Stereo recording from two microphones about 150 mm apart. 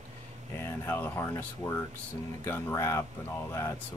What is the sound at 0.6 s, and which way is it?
Speech, 15° left (ahead or behind).